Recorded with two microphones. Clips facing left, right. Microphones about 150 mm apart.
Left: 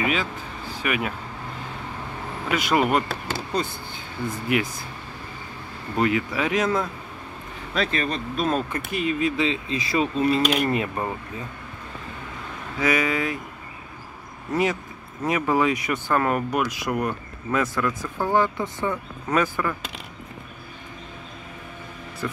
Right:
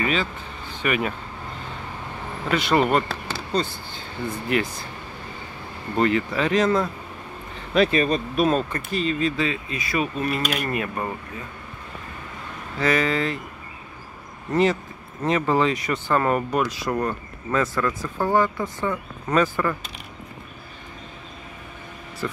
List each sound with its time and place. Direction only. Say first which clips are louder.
0.0 s speech: right 1 dB; 10° left (ahead or behind)
2.5 s speech: right 1 dB; 5° left (ahead or behind)
3.1 s speech: left 1 dB; 50° left (ahead or behind)
5.9 s speech: right 2 dB; 5° left (ahead or behind)
7.7 s speech: right 6 dB; 10° right (ahead or behind)
8.5 s speech: right 1 dB; 10° left (ahead or behind)
12.7 s speech: right 1 dB; 15° left (ahead or behind)
14.5 s speech: right 3 dB; 10° left (ahead or behind)
16.2 s speech: right 2 dB; centre (ahead or behind)
16.6 s speech: right 1 dB; 15° left (ahead or behind)
17.7 s speech: right 1 dB; centre (ahead or behind)
18.3 s speech: even; 20° left (ahead or behind)
22.2 s speech: right 1 dB; 5° left (ahead or behind)